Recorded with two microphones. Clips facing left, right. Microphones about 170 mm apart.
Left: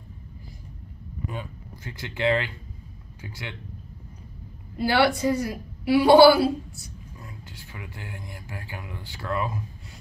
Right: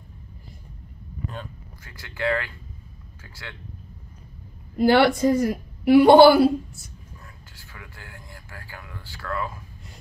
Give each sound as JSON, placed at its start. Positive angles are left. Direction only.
{"t": 1.8, "sound": "speech", "side_deg": 20}
{"t": 4.7, "sound": "a woman's voice", "side_deg": -50}
{"t": 7.2, "sound": "speech", "side_deg": 20}